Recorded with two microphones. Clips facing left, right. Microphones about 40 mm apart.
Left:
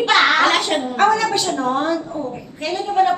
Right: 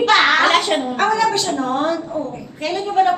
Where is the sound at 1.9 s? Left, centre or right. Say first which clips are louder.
Even; centre.